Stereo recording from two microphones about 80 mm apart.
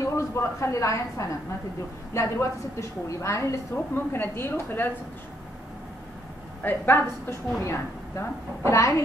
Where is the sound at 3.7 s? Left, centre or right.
Left.